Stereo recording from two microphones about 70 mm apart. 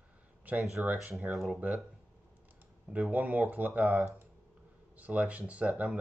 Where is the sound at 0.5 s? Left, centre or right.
Right.